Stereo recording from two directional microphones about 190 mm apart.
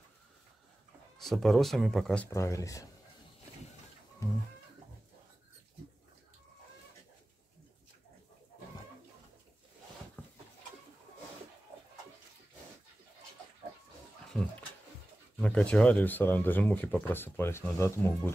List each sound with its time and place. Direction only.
1.1 s speech: centre (ahead or behind)
2.2 s speech: 15° left (ahead or behind)
14.3 s dog: 5° left (ahead or behind)
15.4 s speech: 5° left (ahead or behind)